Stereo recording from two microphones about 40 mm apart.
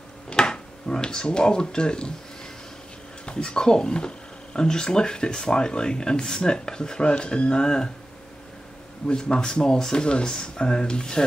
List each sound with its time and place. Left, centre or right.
0.3 s a sound: left
3.3 s speech: left
9.0 s speech: left